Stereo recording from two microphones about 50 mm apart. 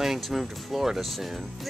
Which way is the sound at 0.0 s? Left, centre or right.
Centre.